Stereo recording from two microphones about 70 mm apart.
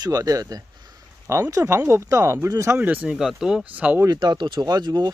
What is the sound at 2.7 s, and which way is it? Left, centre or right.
Speech, right.